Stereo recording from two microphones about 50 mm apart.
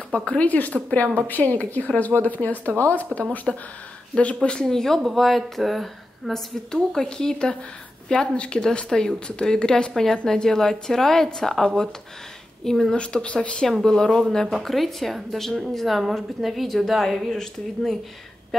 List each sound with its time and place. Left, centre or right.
0.1 s speech: left
0.7 s speech: left
1.2 s a woman's voice: left
3.5 s a woman's voice: centre
4.2 s speech: left
4.6 s a woman's voice: centre
6.7 s a woman's voice: centre
12.9 s speech: centre
13.8 s a woman's voice: centre
18.5 s a sound: centre